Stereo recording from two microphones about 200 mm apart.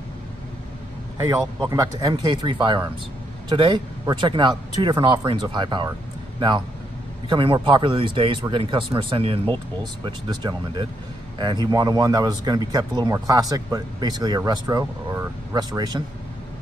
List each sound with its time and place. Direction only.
1.1 s speech: 20° right (ahead or behind)
7.2 s speech: 25° right (ahead or behind)